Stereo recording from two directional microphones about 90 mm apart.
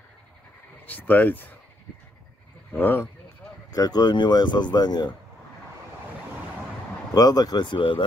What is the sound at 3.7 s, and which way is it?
Speech, 45° left (ahead or behind).